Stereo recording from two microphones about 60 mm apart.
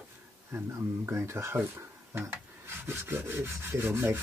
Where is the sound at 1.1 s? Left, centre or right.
Right.